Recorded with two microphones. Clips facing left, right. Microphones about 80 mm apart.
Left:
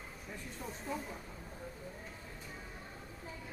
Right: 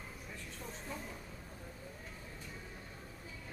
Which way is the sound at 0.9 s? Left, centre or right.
Centre.